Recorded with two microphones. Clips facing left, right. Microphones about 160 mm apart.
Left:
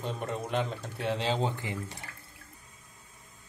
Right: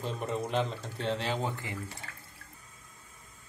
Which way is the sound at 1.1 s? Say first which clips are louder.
Left 3 dB; 20° left (ahead or behind).